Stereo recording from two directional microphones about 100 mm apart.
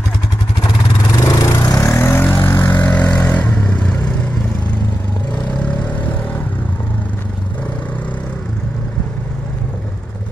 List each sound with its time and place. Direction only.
1.2 s vehicle: 35° left (ahead or behind); by 4.1 s 10° left (ahead or behind)